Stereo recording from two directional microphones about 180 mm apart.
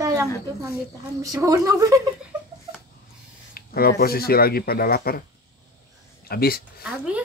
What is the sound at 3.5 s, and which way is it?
Speech, 55° left (ahead or behind).